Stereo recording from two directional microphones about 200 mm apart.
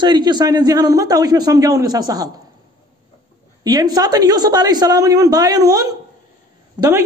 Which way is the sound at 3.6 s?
20° right (ahead or behind).